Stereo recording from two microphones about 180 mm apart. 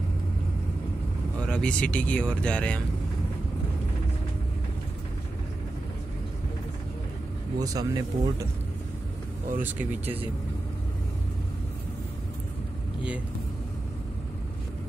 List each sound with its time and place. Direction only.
1.4 s speech: 5° left (ahead or behind)
7.5 s speech: 20° right (ahead or behind)
9.6 s speech: 10° right (ahead or behind)